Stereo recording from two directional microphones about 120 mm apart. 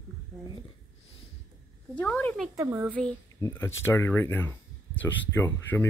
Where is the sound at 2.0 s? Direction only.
10° left (ahead or behind).